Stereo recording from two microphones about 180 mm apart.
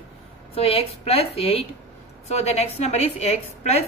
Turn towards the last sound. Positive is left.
turn(degrees=35)  # may be behind; listen again after turning